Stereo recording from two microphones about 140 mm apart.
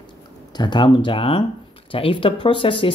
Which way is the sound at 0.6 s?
35° left (ahead or behind).